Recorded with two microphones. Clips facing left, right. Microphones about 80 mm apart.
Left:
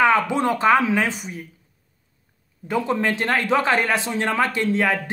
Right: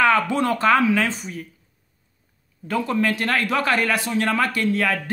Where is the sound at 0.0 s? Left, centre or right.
Centre.